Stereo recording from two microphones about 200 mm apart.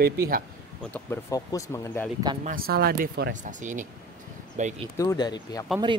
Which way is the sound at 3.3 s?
40° right (ahead or behind).